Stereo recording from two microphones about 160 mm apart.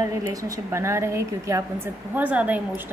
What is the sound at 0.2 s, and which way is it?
Speech, 20° right (ahead or behind).